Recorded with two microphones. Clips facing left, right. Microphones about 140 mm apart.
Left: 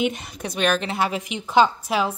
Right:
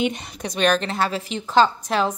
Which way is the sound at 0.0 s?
5° left (ahead or behind).